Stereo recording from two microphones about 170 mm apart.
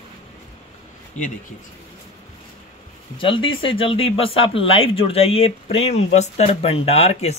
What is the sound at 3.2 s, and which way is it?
Speech, 30° left (ahead or behind).